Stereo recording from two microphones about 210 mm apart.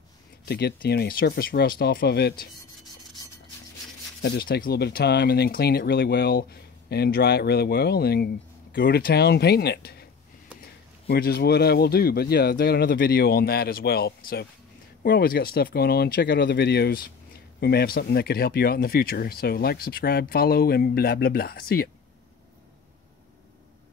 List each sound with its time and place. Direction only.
0.5 s speech: 50° left (ahead or behind)
4.2 s speech: 45° left (ahead or behind)
11.1 s speech: 50° left (ahead or behind)